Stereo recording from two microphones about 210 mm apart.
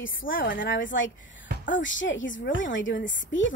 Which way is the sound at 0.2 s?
40° left (ahead or behind).